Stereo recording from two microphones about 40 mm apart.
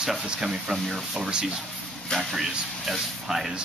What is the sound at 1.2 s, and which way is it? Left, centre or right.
Speech, centre.